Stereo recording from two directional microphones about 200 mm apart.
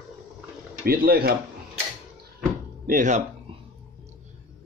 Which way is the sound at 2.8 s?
40° right (ahead or behind).